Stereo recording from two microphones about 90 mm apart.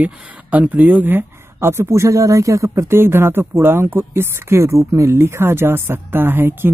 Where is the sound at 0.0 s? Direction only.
15° right (ahead or behind).